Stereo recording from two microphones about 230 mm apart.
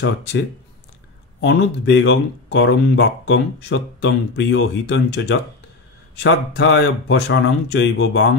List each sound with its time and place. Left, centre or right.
0.0 s speech: left
1.4 s speech: left